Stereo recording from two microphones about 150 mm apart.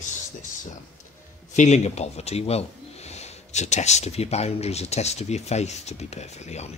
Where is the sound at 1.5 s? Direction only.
50° left (ahead or behind).